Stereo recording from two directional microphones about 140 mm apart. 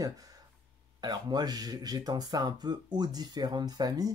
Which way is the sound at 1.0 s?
30° right (ahead or behind).